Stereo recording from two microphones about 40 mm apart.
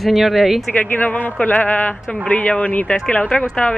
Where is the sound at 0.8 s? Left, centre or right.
Left.